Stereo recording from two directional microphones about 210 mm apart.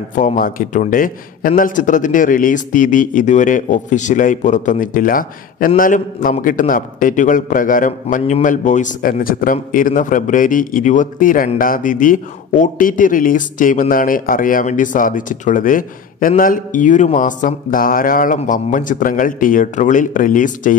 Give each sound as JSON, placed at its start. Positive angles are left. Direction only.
{"t": 0.1, "sound": "a man's voice", "side_deg": 40}